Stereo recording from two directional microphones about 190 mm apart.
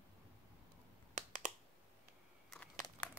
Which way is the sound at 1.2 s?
40° right (ahead or behind).